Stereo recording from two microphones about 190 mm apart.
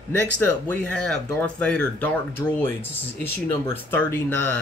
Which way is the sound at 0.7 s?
5° left (ahead or behind).